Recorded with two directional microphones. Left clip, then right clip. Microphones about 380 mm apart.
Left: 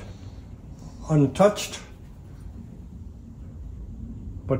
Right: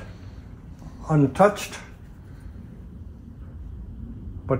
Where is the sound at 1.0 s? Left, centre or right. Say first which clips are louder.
Right 1 dB; centre.